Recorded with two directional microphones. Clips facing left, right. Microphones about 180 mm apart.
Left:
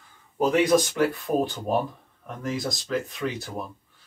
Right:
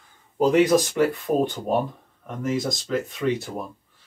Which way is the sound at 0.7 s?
Centre (ahead or behind).